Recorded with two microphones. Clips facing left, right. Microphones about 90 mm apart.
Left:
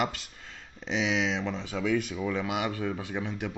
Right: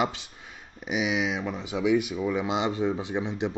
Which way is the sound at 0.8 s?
10° right (ahead or behind).